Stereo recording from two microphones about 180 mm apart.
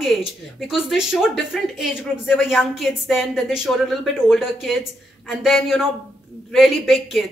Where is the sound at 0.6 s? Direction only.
Centre (ahead or behind).